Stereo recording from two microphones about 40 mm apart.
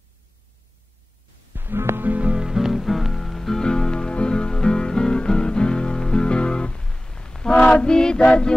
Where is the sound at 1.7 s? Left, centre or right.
Right.